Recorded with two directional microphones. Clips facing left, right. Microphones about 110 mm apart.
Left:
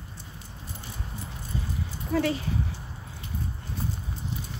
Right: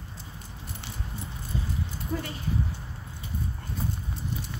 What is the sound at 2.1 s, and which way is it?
Speech, 90° left.